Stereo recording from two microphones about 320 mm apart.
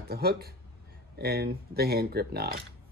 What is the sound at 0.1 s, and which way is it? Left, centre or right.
Speech, right.